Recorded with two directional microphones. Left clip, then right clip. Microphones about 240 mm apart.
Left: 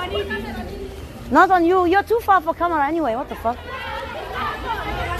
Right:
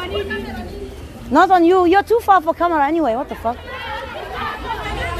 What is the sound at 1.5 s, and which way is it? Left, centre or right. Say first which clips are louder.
Speech: right 4 dB; right.